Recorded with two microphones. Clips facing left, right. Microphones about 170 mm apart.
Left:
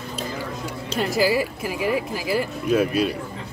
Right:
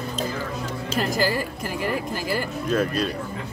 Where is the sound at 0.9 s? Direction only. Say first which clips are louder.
Left 3 dB; 5° left (ahead or behind).